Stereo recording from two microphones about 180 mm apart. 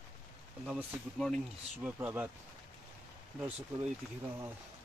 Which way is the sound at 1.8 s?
10° right (ahead or behind).